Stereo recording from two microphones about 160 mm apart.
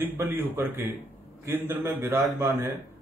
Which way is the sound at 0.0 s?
10° right (ahead or behind).